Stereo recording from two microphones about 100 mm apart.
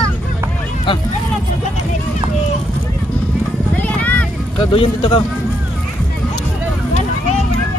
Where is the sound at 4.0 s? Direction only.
15° left (ahead or behind).